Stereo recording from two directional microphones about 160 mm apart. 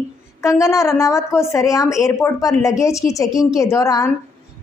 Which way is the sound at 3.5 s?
20° left (ahead or behind).